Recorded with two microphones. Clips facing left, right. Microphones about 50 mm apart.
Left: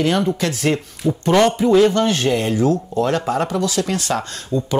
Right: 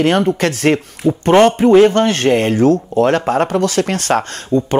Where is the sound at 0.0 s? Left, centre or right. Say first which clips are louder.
Right 5 dB; right.